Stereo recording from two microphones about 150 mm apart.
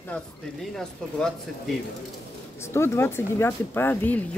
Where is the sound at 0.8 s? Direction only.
5° left (ahead or behind).